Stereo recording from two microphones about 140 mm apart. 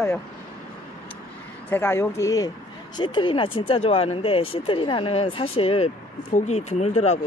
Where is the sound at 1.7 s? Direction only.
15° left (ahead or behind).